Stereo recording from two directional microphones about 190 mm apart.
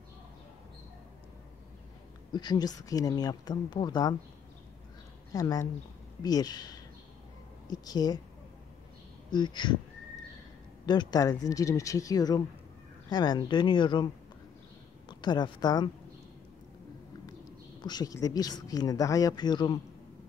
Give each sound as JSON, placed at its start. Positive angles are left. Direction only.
{"t": 2.3, "sound": "speech", "side_deg": 20}
{"t": 5.3, "sound": "speech", "side_deg": 20}
{"t": 9.3, "sound": "speech", "side_deg": 25}
{"t": 10.9, "sound": "speech", "side_deg": 20}
{"t": 15.0, "sound": "speech", "side_deg": 25}
{"t": 17.3, "sound": "speech", "side_deg": 20}